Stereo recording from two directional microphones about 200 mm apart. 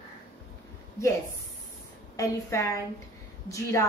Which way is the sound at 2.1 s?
15° left (ahead or behind).